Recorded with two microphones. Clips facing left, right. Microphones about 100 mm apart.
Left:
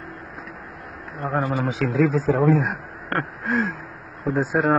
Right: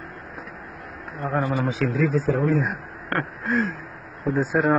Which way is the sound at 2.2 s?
90° left.